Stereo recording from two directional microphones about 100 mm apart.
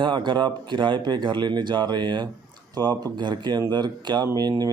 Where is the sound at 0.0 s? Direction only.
55° right (ahead or behind).